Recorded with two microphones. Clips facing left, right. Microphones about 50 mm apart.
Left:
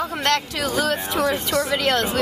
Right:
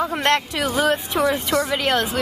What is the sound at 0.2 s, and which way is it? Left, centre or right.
Speech, right.